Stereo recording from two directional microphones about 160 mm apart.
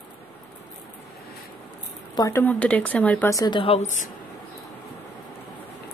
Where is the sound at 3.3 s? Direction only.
25° left (ahead or behind).